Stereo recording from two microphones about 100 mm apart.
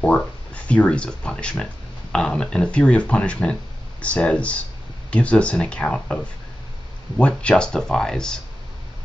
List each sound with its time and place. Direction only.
0.0 s speech: 15° left (ahead or behind)